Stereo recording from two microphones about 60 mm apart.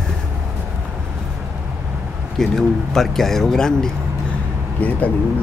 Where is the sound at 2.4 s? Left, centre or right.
Centre.